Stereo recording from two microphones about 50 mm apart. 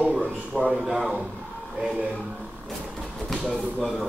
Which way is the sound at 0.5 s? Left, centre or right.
Centre.